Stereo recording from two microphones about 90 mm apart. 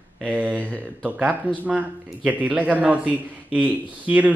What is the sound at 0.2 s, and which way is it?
A man's voice, 15° right (ahead or behind).